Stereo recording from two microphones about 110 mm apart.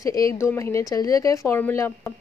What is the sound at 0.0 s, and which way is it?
A woman's voice, 30° left (ahead or behind).